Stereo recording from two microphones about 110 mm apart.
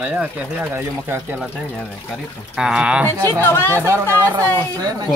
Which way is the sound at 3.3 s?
20° left (ahead or behind).